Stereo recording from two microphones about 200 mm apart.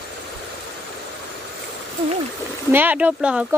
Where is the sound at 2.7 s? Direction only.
10° right (ahead or behind).